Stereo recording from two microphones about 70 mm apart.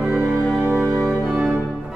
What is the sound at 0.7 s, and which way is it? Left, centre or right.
Organ, centre.